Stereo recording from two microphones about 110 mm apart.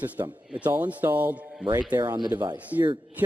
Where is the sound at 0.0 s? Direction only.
15° right (ahead or behind).